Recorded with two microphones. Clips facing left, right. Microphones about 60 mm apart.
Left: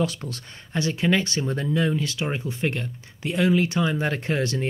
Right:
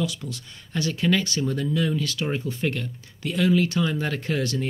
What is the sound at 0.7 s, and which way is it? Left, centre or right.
Speech, left.